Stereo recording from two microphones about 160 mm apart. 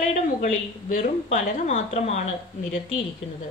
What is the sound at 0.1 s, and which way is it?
A woman's voice, 50° left (ahead or behind).